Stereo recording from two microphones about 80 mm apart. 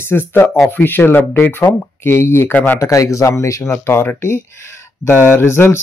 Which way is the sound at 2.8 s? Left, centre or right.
Left.